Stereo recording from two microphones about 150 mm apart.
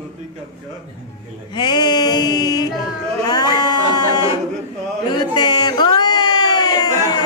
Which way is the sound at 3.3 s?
25° left (ahead or behind).